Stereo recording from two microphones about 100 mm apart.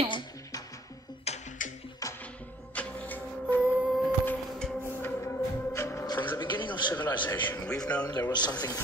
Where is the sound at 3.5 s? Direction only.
10° right (ahead or behind).